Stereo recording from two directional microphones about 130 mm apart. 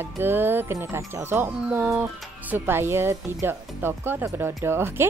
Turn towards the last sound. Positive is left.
turn(degrees=-20)  # may be behind; listen again after turning